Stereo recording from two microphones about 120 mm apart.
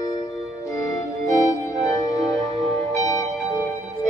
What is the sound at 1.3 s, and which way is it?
Organ, 30° left (ahead or behind).